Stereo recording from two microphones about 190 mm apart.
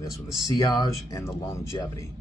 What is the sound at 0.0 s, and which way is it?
Speech, 20° left (ahead or behind).